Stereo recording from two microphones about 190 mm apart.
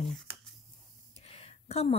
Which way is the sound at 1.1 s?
30° left (ahead or behind).